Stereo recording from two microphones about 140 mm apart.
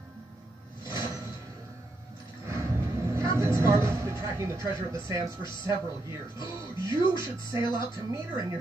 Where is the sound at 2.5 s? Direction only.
20° right (ahead or behind).